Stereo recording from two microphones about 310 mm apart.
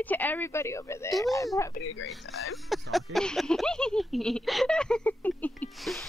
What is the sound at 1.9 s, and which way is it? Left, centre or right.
Speech, left.